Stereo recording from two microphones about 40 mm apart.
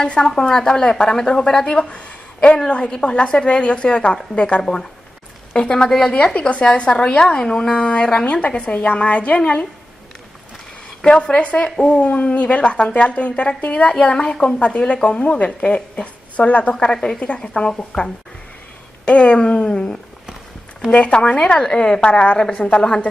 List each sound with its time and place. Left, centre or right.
0.0 s a woman's voice: centre
5.9 s a woman's voice: centre
6.6 s a woman's voice: left
7.2 s speech: left
8.4 s a woman's voice: left
11.0 s a woman's voice: left
16.9 s a woman's voice: centre
20.9 s speech: left